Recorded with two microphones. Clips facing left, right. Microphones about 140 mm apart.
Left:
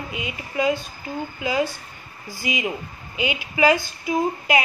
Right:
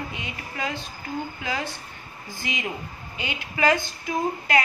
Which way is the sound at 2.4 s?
10° left (ahead or behind).